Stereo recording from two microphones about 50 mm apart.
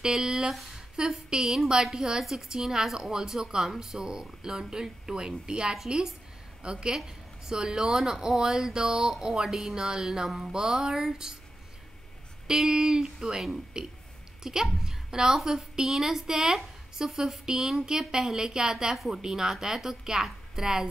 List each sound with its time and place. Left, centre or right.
0.0 s a woman's voice: centre
0.9 s a woman's voice: centre
12.4 s a woman's voice: centre
18.9 s a woman's voice: centre